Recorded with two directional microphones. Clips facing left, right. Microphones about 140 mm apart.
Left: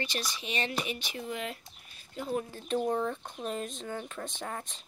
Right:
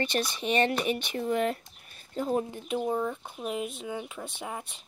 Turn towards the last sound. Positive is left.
turn(degrees=-10)  # may be behind; listen again after turning